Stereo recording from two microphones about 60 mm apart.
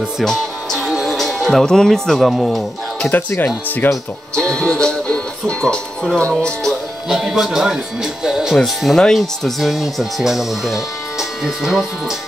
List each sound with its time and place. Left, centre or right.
0.2 s music: centre
3.1 s speech: left
4.4 s speech: centre
7.1 s speech: centre
8.5 s speech: centre